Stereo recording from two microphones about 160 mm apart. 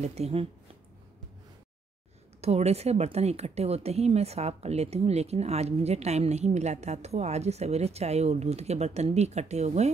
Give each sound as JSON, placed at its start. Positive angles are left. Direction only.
{"t": 0.0, "sound": "speech", "side_deg": -40}
{"t": 2.4, "sound": "speech", "side_deg": -40}